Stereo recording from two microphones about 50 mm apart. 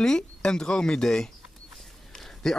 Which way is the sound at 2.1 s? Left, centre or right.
Centre.